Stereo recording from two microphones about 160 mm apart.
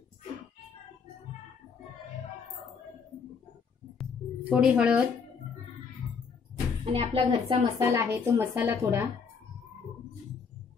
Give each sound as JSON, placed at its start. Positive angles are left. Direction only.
{"t": 4.5, "sound": "a woman's voice", "side_deg": -5}
{"t": 6.9, "sound": "speech", "side_deg": -35}
{"t": 7.8, "sound": "a woman's voice", "side_deg": -15}